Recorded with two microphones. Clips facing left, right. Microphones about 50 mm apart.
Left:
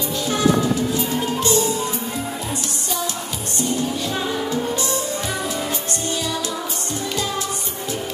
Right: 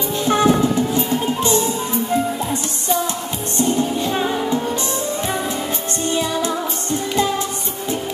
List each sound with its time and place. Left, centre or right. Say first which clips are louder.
0.2 s music: right 3 dB; right
3.5 s music: right 4 dB; right